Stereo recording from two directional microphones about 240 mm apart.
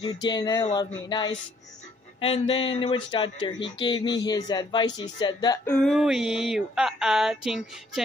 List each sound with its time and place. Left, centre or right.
0.0 s music: centre
2.1 s speech: left
5.8 s a sound: centre